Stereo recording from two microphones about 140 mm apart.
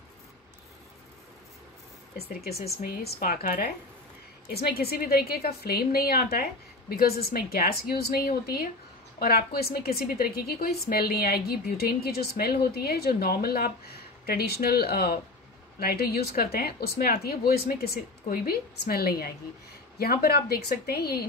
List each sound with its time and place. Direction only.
2.2 s a woman's voice: 90° left